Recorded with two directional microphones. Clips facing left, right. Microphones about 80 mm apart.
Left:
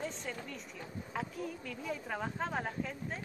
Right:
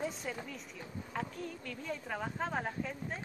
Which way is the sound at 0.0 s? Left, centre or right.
Centre.